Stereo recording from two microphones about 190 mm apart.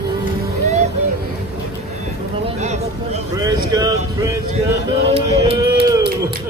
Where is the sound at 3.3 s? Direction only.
20° right (ahead or behind).